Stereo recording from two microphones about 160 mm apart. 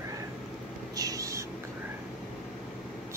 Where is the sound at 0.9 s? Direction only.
20° right (ahead or behind).